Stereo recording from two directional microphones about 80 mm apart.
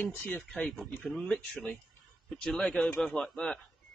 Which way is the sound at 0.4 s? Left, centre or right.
Centre.